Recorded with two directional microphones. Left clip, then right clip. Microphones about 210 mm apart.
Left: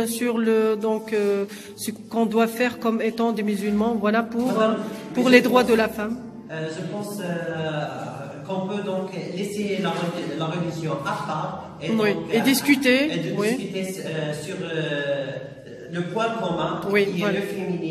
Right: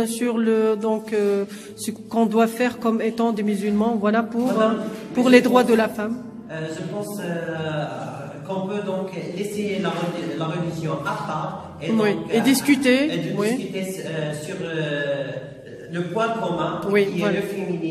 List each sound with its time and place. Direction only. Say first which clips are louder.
0.0 s music: right 1 dB; 5° right (ahead or behind)
11.8 s music: right 1 dB; 10° right (ahead or behind)
16.2 s a man's voice: right 1 dB; 5° right (ahead or behind)